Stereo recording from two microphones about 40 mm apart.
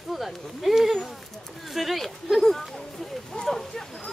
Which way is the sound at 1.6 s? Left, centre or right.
Centre.